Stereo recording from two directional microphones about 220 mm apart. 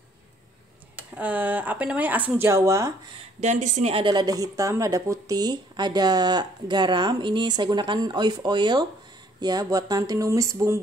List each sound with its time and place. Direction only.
1.1 s speech: 5° right (ahead or behind)
3.3 s speech: 35° right (ahead or behind); by 10.8 s 15° right (ahead or behind)